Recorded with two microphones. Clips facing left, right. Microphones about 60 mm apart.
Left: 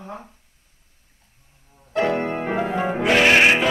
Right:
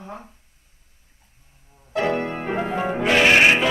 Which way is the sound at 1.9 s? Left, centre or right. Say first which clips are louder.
Left 1 dB; centre.